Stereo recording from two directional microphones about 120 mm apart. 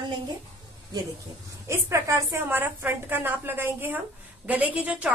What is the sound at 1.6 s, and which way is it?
A woman's voice, 25° right (ahead or behind).